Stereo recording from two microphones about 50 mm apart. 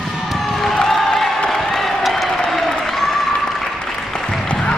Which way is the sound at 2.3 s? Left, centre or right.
Centre.